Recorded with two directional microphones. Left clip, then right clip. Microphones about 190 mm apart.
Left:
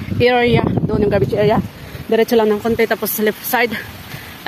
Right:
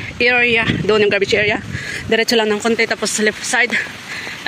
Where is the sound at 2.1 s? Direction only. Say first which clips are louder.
Left 1 dB; 10° left (ahead or behind).